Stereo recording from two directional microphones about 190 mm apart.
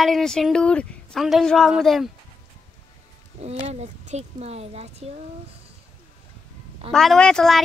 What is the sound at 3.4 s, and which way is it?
Speech, 35° right (ahead or behind).